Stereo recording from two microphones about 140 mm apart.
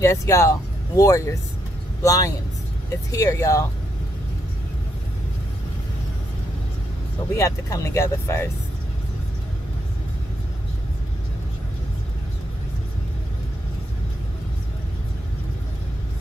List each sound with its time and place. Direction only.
0.0 s speech: 20° left (ahead or behind)
7.3 s speech: 20° left (ahead or behind)